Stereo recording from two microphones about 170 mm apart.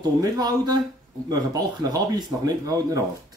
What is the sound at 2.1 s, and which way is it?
Speech, 20° right (ahead or behind).